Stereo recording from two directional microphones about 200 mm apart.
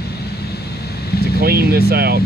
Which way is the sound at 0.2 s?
55° left (ahead or behind).